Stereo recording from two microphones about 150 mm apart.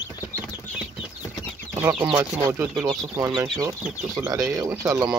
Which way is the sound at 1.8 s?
15° right (ahead or behind).